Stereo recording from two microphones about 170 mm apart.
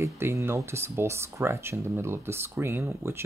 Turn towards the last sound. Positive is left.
turn(degrees=-15)  # may be behind; listen again after turning